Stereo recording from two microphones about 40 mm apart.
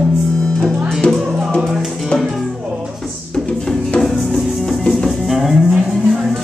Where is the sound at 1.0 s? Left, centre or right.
Left.